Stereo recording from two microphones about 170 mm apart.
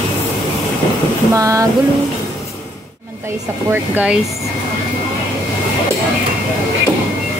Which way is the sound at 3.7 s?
10° right (ahead or behind).